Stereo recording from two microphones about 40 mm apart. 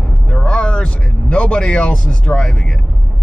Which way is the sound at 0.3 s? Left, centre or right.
Left.